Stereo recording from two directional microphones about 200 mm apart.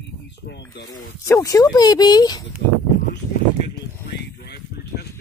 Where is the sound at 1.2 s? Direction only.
15° left (ahead or behind).